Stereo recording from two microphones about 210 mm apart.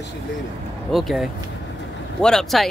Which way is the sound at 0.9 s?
Centre (ahead or behind).